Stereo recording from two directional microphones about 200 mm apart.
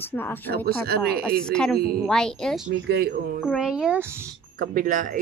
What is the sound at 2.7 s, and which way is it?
Speech, 55° right (ahead or behind).